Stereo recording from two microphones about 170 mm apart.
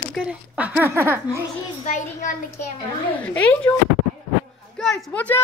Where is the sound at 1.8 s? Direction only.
45° left (ahead or behind).